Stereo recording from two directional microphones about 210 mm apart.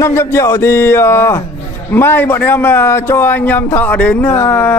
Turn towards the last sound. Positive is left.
turn(degrees=10)  # may be behind; listen again after turning